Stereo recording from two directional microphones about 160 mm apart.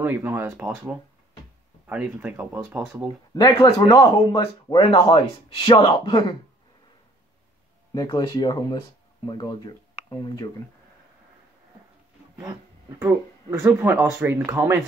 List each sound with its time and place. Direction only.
0.0 s speech: 15° right (ahead or behind)
3.3 s speech: 25° left (ahead or behind)
7.9 s speech: 25° left (ahead or behind)
13.0 s speech: 15° right (ahead or behind)